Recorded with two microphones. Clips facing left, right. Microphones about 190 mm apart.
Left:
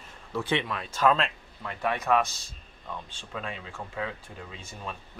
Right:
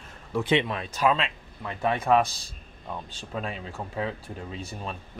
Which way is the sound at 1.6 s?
25° right (ahead or behind).